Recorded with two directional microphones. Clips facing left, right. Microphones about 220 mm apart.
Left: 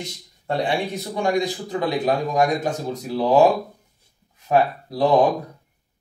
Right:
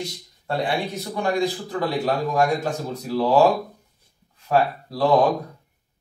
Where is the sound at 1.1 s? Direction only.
15° left (ahead or behind).